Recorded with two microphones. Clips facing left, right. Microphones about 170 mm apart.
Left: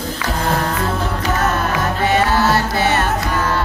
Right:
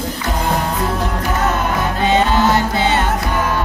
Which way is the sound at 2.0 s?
20° right (ahead or behind).